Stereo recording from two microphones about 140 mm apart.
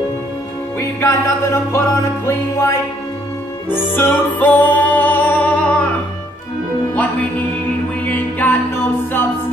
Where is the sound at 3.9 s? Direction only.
15° left (ahead or behind).